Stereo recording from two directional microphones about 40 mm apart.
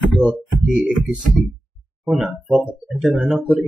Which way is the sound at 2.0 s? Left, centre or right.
Centre.